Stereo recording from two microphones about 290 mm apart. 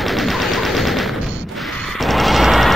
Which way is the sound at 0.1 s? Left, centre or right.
Centre.